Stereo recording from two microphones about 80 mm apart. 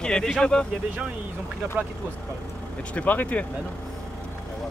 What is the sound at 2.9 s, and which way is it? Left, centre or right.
Speech, centre.